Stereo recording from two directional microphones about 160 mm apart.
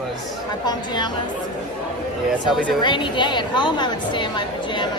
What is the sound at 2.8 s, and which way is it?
Speech, 30° left (ahead or behind).